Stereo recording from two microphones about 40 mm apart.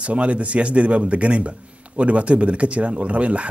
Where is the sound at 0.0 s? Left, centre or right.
Right.